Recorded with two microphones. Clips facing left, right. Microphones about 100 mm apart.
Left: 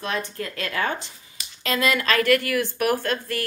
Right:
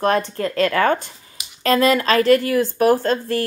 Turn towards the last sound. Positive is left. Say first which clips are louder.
# right 7 dB
turn(degrees=-30)  # may be behind; listen again after turning